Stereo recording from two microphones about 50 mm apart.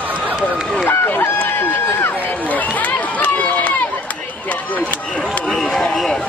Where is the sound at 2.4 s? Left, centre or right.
Left.